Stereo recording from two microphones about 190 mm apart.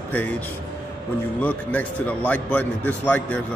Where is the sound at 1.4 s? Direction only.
10° left (ahead or behind).